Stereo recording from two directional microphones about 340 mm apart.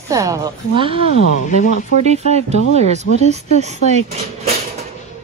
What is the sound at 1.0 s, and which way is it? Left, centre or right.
Speech, left.